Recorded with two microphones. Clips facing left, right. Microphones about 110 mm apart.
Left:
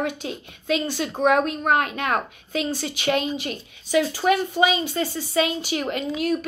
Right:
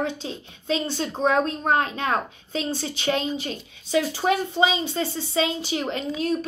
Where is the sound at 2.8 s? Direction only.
30° right (ahead or behind).